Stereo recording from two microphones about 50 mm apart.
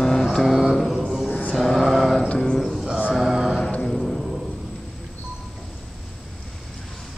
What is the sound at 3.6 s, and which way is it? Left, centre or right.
Mantra, left.